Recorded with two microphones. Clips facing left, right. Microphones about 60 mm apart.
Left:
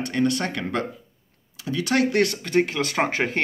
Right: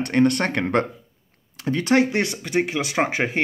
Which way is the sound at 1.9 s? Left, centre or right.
Right.